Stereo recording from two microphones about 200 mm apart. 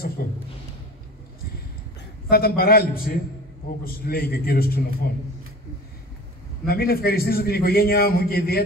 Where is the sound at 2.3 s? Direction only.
50° left (ahead or behind).